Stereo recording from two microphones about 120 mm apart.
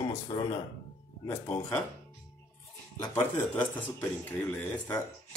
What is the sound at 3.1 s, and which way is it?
Speech, 15° left (ahead or behind).